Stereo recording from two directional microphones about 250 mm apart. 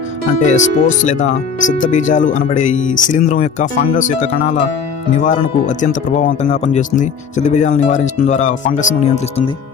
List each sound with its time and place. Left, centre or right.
0.3 s speech: left